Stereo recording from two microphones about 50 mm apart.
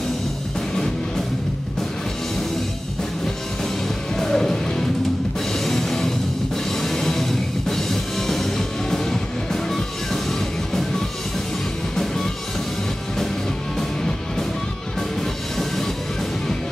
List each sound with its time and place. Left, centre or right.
4.2 s music: centre
15.5 s music: centre